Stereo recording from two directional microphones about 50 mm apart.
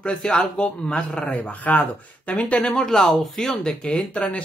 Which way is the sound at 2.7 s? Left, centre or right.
Centre.